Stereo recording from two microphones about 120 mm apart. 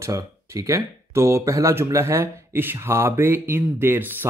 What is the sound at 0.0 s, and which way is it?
Speech, 25° right (ahead or behind).